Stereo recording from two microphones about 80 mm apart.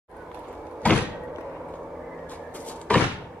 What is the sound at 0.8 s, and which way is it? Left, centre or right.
Door, centre.